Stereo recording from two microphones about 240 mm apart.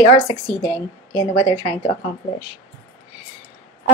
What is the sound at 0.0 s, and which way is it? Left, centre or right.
A woman's voice, left.